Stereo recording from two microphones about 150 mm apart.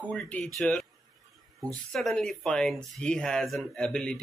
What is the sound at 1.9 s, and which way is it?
Speech, centre (ahead or behind).